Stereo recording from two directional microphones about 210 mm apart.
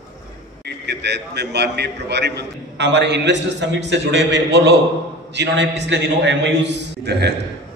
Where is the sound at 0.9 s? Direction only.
55° right (ahead or behind).